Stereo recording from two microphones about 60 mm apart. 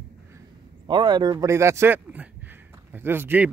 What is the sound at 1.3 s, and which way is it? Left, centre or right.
Speech, right.